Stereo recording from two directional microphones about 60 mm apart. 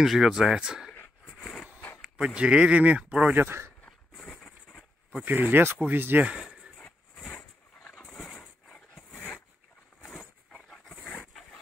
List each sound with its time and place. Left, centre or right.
0.0 s speech: centre
1.2 s a sound: centre
2.1 s speech: centre
3.3 s speech: right
4.3 s a sound: centre
5.2 s speech: right
7.2 s a sound: centre
8.0 s dog: centre
9.1 s zipper: left